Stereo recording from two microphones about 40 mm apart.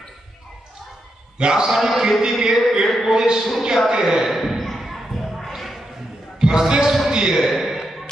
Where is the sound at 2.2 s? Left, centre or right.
Centre.